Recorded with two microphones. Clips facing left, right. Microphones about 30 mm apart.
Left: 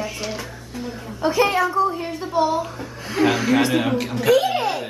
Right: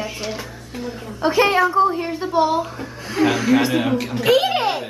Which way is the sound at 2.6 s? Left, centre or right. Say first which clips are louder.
Right 2 dB; centre.